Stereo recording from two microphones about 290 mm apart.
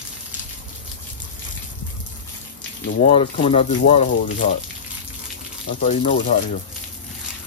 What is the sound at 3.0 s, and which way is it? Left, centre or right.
Speech, left.